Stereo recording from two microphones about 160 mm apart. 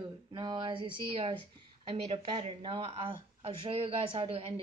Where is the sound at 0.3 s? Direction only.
30° right (ahead or behind).